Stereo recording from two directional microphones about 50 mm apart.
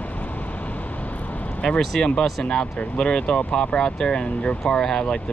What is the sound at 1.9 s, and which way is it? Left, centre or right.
Speech, centre.